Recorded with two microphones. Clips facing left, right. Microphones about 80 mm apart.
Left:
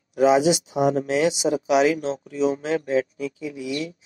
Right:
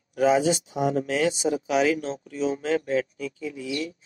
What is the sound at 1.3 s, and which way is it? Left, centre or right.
Speech, left.